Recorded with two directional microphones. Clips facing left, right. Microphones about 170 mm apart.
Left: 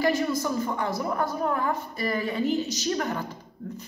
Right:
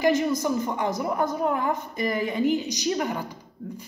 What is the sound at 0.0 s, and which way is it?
A woman's voice, 20° right (ahead or behind).